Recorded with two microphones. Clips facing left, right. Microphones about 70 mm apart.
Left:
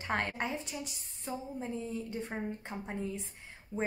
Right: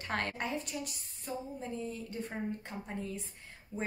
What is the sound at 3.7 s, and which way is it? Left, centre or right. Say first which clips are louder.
Speech: left 3 dB; left.